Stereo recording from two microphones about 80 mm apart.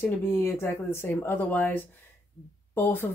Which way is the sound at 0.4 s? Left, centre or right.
Left.